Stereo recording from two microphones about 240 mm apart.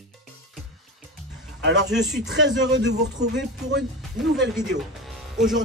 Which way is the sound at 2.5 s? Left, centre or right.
Right.